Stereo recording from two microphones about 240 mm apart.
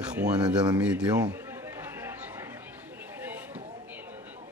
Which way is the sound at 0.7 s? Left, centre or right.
Centre.